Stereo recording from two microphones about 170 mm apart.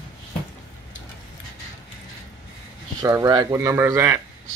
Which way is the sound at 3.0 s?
20° right (ahead or behind).